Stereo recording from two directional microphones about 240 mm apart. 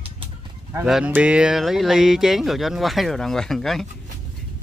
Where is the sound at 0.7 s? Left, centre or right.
Centre.